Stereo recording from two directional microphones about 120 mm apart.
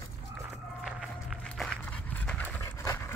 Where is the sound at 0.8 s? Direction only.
5° right (ahead or behind).